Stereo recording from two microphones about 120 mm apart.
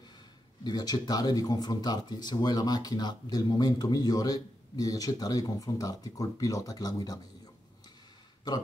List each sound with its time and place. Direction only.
0.7 s speech: 35° left (ahead or behind)
8.5 s speech: 35° left (ahead or behind)